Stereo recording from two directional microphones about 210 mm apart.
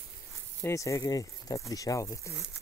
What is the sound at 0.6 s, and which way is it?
Speech, 15° left (ahead or behind).